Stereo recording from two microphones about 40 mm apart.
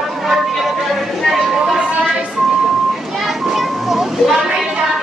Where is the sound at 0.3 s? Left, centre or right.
Centre.